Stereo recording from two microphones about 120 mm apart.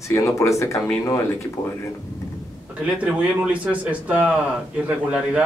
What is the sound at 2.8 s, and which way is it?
Speech, 10° right (ahead or behind).